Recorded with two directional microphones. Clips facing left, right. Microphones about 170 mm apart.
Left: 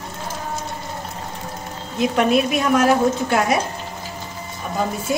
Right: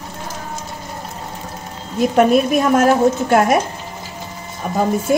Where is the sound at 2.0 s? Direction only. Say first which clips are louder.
Right 4 dB; 45° right (ahead or behind).